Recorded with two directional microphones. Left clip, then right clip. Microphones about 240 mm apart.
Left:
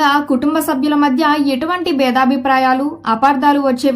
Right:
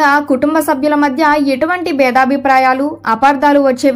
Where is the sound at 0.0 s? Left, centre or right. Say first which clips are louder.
Right 3 dB; centre.